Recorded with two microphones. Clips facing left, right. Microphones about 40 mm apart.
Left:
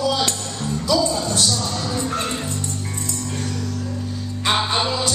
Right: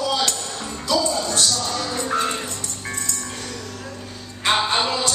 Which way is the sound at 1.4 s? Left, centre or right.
Centre.